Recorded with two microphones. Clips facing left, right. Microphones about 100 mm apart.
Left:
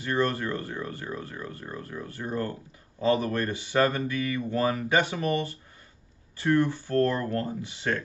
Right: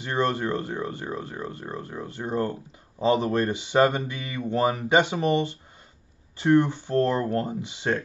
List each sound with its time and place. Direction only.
0.0 s speech: 20° right (ahead or behind)